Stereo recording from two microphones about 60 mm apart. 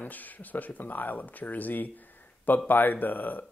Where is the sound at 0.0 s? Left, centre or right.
Left.